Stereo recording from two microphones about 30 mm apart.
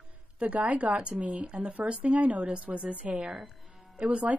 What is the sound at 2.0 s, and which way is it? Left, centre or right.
Speech, right.